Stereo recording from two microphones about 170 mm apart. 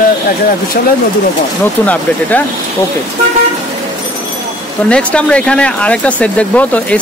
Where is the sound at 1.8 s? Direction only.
10° left (ahead or behind).